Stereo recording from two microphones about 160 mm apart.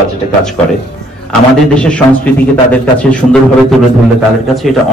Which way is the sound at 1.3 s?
5° left (ahead or behind).